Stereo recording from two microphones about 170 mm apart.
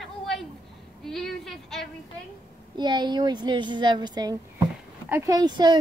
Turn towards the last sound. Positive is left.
turn(degrees=-25)  # may be behind; listen again after turning